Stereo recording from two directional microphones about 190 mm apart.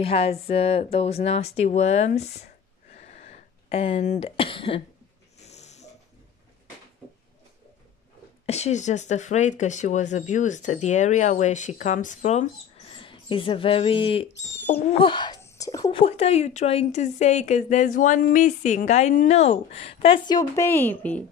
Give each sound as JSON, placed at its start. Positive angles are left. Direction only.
{"t": 0.0, "sound": "speech", "side_deg": 30}
{"t": 2.9, "sound": "a sound", "side_deg": 35}
{"t": 5.4, "sound": "dog", "side_deg": 35}
{"t": 8.5, "sound": "speech", "side_deg": 35}